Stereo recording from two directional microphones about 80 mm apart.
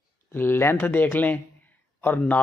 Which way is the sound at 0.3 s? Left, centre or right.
Left.